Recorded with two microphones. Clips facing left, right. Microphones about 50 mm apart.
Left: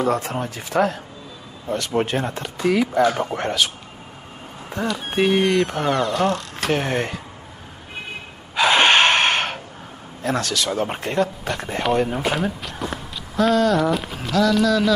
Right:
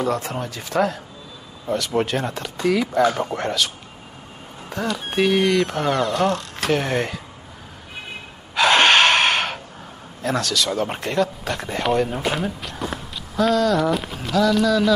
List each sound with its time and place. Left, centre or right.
0.2 s speech: left
0.7 s speech: centre
8.5 s gasp: centre
10.2 s speech: centre